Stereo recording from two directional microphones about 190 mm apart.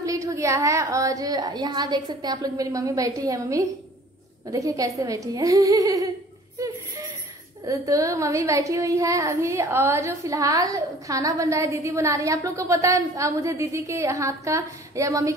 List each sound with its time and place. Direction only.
0.0 s speech: 15° right (ahead or behind)
7.6 s speech: 15° right (ahead or behind)